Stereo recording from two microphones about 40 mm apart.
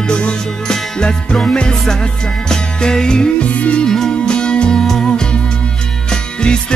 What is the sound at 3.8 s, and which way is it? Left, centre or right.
Music, centre.